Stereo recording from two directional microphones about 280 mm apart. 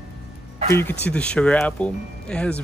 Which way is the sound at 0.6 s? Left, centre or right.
Centre.